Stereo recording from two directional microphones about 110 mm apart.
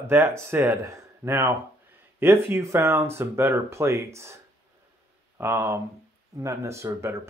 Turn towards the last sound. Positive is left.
turn(degrees=-25)  # may be behind; listen again after turning